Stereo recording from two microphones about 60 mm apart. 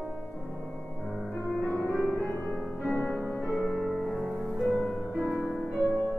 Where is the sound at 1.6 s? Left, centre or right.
Left.